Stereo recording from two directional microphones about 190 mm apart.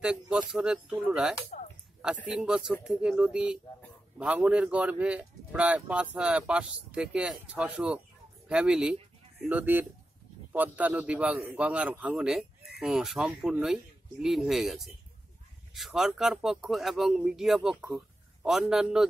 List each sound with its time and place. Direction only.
0.0 s speech: 5° right (ahead or behind)
1.5 s a sound: 40° left (ahead or behind)
2.0 s a man's voice: 5° right (ahead or behind)